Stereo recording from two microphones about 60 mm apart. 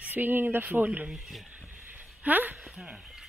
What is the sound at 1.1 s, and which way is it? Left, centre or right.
Speech, centre.